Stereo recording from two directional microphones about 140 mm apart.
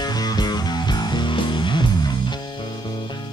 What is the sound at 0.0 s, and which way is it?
Music, 30° left (ahead or behind).